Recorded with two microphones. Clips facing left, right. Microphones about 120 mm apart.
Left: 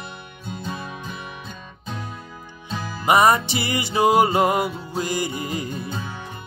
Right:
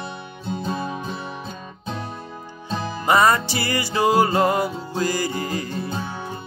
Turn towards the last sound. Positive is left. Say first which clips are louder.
# right 3 dB
turn(degrees=-30)  # may be behind; listen again after turning